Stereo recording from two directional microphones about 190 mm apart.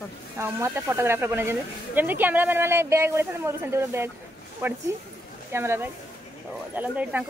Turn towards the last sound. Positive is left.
turn(degrees=-10)  # may be behind; listen again after turning